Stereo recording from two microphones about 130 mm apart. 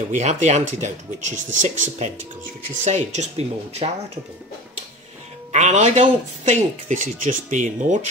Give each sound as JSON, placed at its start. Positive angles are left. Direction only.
{"t": 0.1, "sound": "speech", "side_deg": -65}
{"t": 5.5, "sound": "speech", "side_deg": -65}